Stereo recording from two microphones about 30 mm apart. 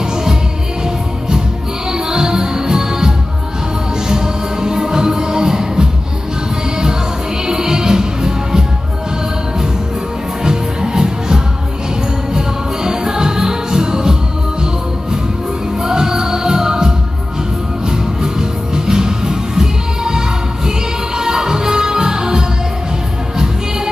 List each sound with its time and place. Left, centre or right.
1.9 s music: right
7.4 s music: right
10.4 s music: right
15.8 s music: centre